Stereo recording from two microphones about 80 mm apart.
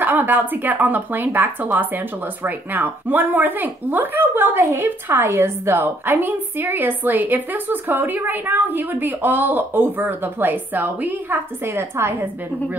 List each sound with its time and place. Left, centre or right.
0.0 s speech: right